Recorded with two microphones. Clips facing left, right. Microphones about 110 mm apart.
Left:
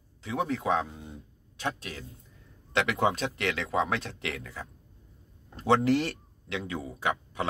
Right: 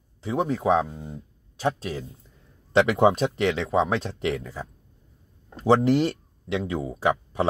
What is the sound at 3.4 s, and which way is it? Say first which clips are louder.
Speech: right 6 dB; 25° right (ahead or behind).